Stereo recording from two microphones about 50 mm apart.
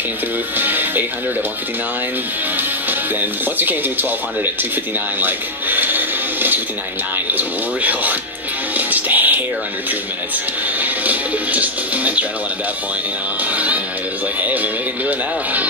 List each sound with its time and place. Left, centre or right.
0.6 s music: right
2.5 s speech: right
5.2 s music: right
7.3 s speech: right
8.7 s music: right
10.8 s speech: right
14.4 s speech: right